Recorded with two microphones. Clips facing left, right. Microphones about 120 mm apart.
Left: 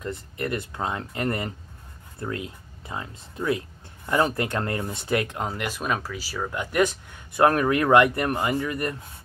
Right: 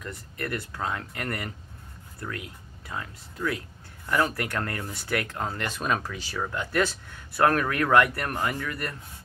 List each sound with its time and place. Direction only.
0.0 s speech: 25° left (ahead or behind)